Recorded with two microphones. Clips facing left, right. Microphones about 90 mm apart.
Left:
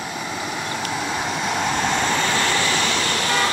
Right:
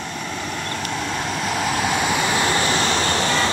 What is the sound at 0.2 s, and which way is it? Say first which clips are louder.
Vehicle: left 1 dB; 5° left (ahead or behind).